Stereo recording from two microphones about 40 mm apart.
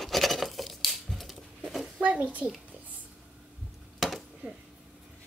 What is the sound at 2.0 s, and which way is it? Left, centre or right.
Speech, right.